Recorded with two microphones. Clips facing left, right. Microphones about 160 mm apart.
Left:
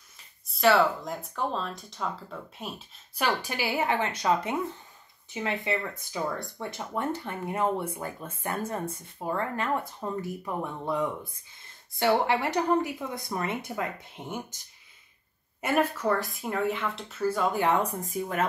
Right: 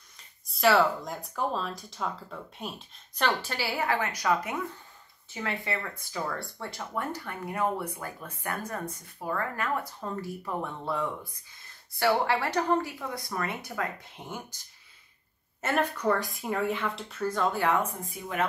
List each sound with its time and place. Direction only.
0.5 s speech: centre (ahead or behind)
3.2 s speech: 15° left (ahead or behind)
15.6 s speech: 5° left (ahead or behind)
17.8 s speech: 40° left (ahead or behind)